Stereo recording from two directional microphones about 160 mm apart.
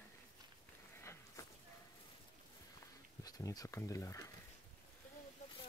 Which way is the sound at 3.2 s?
25° left (ahead or behind).